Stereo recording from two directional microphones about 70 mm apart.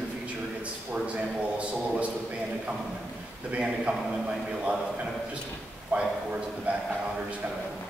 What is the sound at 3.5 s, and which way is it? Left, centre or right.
Speech, centre.